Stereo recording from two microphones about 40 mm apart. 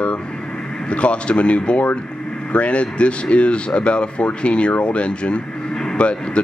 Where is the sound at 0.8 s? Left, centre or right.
Left.